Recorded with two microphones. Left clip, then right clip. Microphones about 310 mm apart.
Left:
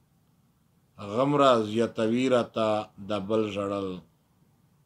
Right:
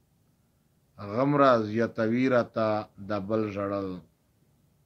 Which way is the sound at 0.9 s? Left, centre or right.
Left.